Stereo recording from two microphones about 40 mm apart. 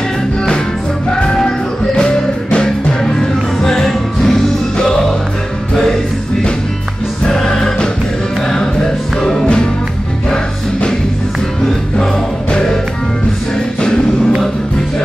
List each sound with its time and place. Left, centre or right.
1.1 s music: centre
7.2 s music: centre
9.2 s music: centre
10.3 s music: left
13.7 s music: left